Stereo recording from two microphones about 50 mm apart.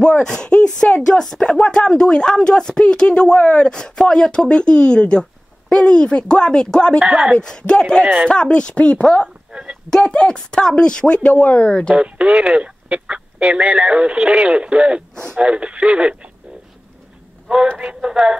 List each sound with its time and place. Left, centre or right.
0.2 s speech: centre
7.0 s speech: centre
7.3 s speech: centre
9.5 s a sound: centre
9.8 s speech: centre
11.9 s speech: right
17.6 s speech: right